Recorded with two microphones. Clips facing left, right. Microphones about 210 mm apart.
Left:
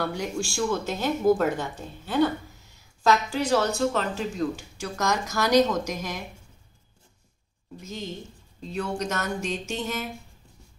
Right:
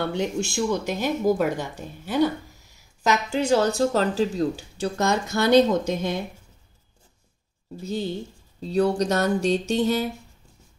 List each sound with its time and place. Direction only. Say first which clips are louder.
0.0 s a woman's voice: right 3 dB; 25° right (ahead or behind)
7.8 s speech: right 8 dB; 35° right (ahead or behind)